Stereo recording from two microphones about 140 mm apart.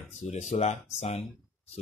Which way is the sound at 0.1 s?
55° left (ahead or behind).